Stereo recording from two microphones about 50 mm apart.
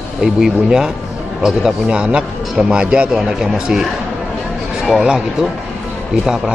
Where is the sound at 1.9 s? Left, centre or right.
Right.